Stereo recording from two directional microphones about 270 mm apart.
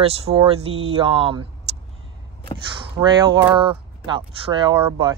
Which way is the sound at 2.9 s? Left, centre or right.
Centre.